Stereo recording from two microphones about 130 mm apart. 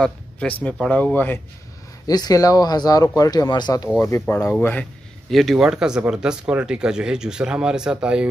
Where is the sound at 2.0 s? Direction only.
30° left (ahead or behind).